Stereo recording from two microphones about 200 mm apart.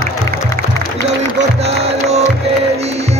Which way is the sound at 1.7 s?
30° right (ahead or behind).